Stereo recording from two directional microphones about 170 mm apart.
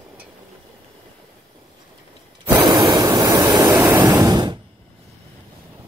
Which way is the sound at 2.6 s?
25° right (ahead or behind).